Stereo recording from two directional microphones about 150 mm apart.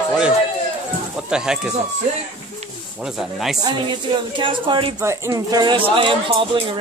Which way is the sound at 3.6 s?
30° right (ahead or behind).